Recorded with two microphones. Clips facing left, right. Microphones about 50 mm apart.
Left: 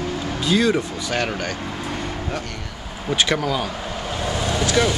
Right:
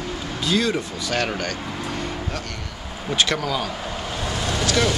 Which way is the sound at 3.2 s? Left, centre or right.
Centre.